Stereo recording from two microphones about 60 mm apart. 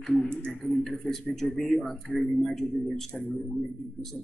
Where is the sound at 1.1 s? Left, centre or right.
Centre.